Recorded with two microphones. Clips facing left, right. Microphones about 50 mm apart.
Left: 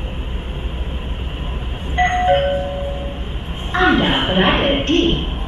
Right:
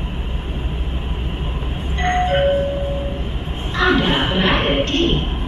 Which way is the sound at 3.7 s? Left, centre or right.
Left.